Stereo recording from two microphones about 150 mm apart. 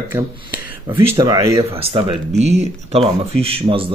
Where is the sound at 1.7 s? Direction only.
40° right (ahead or behind).